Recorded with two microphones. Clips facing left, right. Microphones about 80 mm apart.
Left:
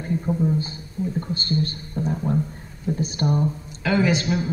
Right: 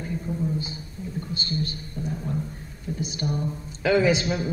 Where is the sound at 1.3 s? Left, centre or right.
Left.